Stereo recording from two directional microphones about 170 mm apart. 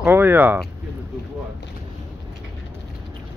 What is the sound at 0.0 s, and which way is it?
Speech, 10° right (ahead or behind).